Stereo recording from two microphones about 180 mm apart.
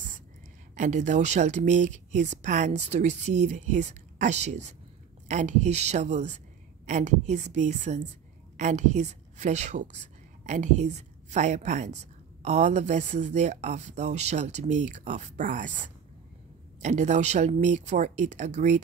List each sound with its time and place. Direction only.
0.7 s a woman's voice: 40° right (ahead or behind)